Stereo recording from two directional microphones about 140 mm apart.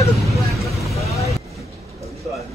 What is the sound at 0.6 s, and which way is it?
Vehicle, 20° left (ahead or behind).